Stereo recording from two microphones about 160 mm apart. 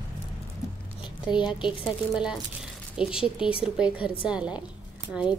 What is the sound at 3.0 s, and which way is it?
A woman's voice, 5° right (ahead or behind).